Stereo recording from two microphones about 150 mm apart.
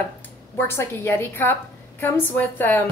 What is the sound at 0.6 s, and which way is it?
A woman's voice, 15° left (ahead or behind).